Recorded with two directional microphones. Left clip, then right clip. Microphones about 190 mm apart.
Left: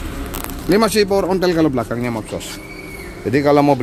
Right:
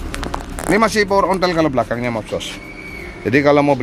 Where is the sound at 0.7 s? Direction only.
10° left (ahead or behind).